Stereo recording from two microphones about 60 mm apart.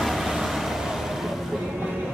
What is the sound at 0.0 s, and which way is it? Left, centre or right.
Vehicle, centre.